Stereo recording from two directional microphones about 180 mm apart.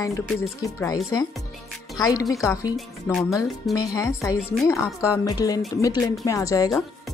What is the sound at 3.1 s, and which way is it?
Speech, centre (ahead or behind).